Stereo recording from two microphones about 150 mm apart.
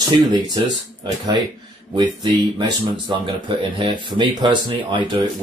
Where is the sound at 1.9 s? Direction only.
30° right (ahead or behind).